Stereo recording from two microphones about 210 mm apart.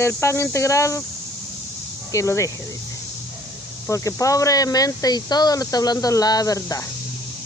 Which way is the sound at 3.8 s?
15° left (ahead or behind).